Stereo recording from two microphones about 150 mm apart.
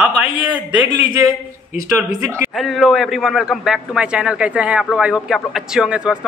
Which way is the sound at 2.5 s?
Centre (ahead or behind).